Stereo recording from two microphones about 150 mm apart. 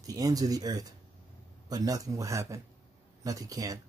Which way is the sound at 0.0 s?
25° right (ahead or behind).